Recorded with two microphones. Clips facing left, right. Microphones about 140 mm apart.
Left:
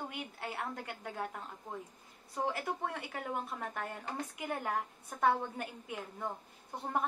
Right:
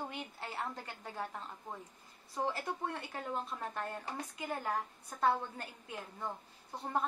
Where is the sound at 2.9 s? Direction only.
10° left (ahead or behind).